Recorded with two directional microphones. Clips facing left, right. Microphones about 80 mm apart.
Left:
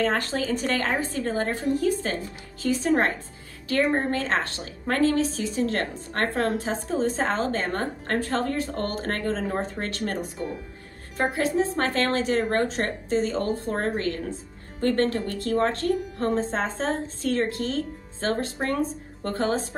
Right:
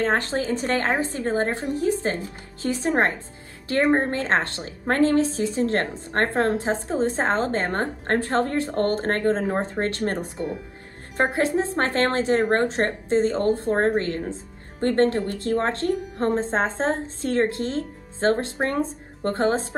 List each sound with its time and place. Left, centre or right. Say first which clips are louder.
0.1 s a woman's voice: right 3 dB; right